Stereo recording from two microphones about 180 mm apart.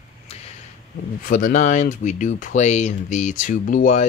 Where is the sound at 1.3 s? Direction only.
45° left (ahead or behind).